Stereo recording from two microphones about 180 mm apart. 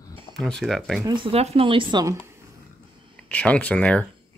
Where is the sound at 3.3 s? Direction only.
10° left (ahead or behind).